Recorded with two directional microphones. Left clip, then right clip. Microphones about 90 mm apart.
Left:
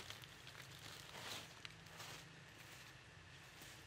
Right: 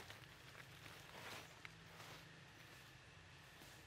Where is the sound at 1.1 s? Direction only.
35° left (ahead or behind).